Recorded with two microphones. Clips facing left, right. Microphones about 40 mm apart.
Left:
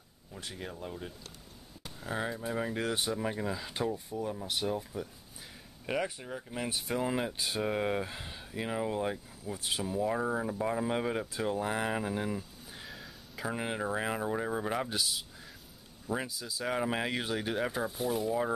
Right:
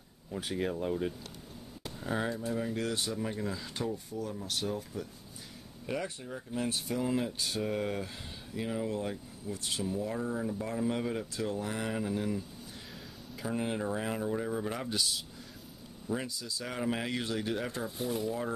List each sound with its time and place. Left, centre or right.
0.3 s speech: centre
1.8 s a sound: centre
2.2 s speech: centre
6.0 s speech: centre
13.5 s speech: centre
17.8 s speech: centre